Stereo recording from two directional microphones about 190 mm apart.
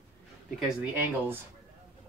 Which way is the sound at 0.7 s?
10° right (ahead or behind).